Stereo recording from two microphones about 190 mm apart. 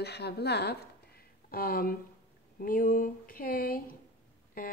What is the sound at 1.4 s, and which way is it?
A woman's voice, 50° left (ahead or behind).